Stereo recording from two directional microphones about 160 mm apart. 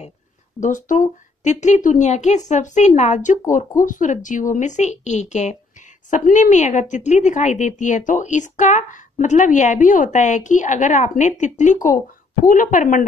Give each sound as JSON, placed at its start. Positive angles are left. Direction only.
{"t": 0.6, "sound": "a woman's voice", "side_deg": 55}